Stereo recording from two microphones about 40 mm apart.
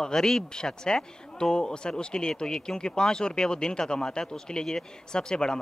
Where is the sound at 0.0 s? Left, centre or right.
Centre.